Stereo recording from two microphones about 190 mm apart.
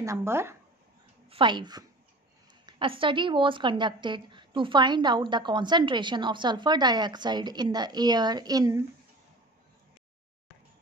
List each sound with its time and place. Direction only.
0.0 s speech: 15° right (ahead or behind)
1.3 s a woman's voice: 25° right (ahead or behind)